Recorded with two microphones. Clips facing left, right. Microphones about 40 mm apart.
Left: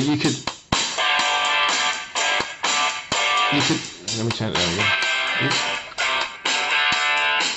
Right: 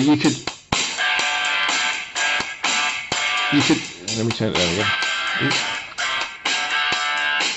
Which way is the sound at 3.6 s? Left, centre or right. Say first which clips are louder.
Right 4 dB; right.